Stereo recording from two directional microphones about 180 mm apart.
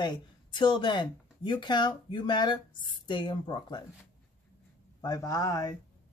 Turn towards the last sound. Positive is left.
turn(degrees=20)  # may be behind; listen again after turning